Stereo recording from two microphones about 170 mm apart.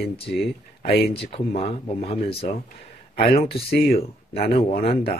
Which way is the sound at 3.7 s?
65° left (ahead or behind).